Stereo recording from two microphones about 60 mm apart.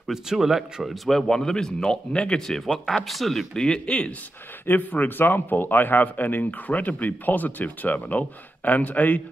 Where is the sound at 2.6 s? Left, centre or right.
Centre.